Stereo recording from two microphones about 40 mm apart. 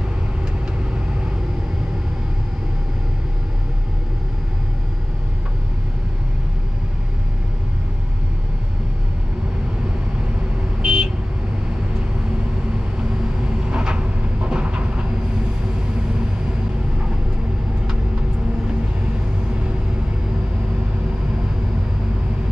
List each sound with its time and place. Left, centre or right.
10.8 s vehicle: right
13.7 s vehicle: right